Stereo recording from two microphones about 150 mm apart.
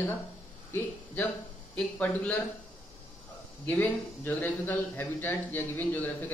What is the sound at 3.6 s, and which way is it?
A man's voice, 10° left (ahead or behind).